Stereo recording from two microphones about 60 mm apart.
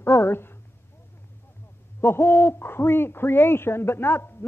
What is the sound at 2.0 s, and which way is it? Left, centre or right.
Hoot, left.